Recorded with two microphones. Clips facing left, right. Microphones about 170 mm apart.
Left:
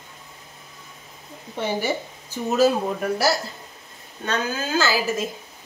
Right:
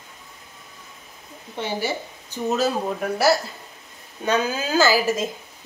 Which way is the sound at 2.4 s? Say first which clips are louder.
Left 3 dB; centre (ahead or behind).